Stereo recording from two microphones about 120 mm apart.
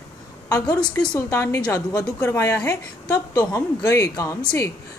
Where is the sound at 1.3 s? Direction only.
25° left (ahead or behind).